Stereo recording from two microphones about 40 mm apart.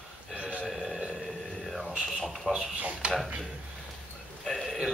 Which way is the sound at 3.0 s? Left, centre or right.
Right.